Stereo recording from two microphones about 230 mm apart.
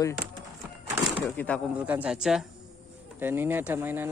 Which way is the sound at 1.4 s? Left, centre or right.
Centre.